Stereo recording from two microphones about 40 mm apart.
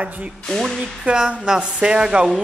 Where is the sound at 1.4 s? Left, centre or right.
Centre.